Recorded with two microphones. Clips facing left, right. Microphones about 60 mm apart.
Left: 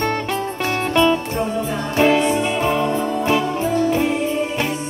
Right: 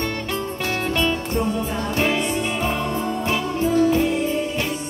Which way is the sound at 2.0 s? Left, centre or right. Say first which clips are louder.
Left 8 dB; left.